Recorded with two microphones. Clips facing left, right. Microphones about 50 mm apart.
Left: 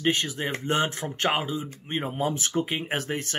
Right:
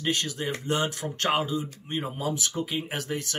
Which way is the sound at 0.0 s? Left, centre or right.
Left.